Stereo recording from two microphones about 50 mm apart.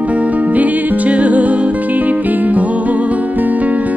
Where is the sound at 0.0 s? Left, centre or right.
Right.